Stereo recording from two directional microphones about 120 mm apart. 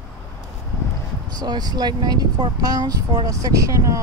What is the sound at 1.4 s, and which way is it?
Speech, 35° right (ahead or behind).